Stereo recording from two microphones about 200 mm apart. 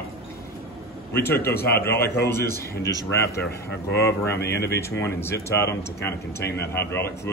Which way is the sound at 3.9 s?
55° left (ahead or behind).